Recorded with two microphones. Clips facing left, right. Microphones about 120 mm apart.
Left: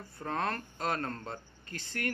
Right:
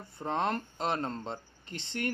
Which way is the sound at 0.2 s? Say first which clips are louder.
Right 3 dB; 20° right (ahead or behind).